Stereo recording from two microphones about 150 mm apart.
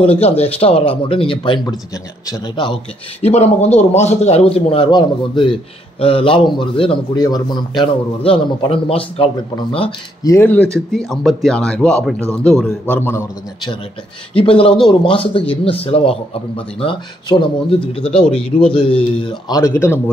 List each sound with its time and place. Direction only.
0.0 s a man's voice: 40° left (ahead or behind)
3.3 s a man's voice: 45° left (ahead or behind)
10.2 s speech: 15° left (ahead or behind)
12.9 s speech: 15° left (ahead or behind)
14.3 s a man's voice: 35° left (ahead or behind)
19.6 s speech: 15° left (ahead or behind)